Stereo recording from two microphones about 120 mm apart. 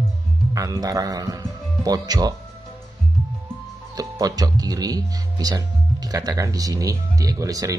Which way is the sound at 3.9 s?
30° right (ahead or behind).